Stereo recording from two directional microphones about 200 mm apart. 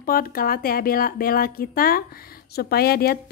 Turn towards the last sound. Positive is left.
turn(degrees=50)  # may be behind; listen again after turning